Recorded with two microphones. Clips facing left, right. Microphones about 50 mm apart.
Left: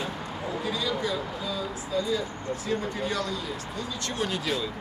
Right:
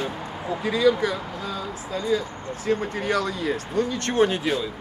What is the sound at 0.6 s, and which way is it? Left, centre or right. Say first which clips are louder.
Speech: right 10 dB; right.